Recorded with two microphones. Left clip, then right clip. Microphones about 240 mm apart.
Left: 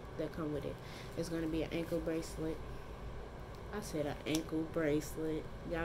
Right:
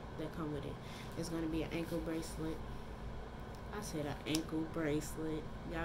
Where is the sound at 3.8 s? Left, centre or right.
Centre.